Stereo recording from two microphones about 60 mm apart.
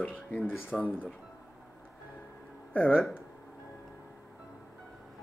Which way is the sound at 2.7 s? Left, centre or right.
Left.